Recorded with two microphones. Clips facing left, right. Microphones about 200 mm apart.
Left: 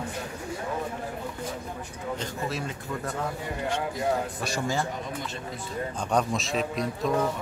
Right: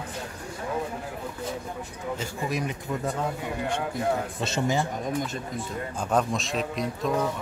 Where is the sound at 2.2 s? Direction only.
15° right (ahead or behind).